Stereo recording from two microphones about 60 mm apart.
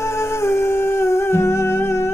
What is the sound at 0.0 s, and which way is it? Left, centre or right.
Humming, left.